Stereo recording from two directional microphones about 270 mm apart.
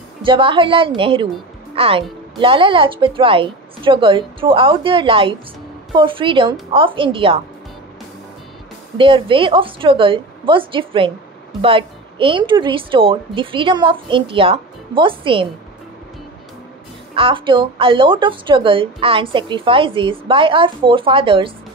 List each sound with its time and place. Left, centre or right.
0.2 s a woman's voice: centre
8.9 s a woman's voice: centre
17.1 s a woman's voice: centre